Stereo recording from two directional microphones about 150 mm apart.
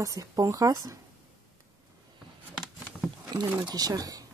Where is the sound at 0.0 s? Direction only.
25° right (ahead or behind).